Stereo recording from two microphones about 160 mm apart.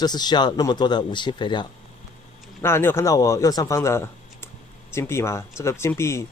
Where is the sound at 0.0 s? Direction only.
25° left (ahead or behind).